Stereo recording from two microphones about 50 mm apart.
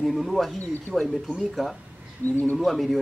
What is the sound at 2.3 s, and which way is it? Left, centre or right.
Speech, left.